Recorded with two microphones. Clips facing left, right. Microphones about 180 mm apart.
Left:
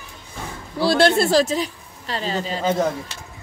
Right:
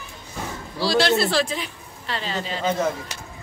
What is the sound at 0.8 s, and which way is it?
A woman's voice, 55° left (ahead or behind).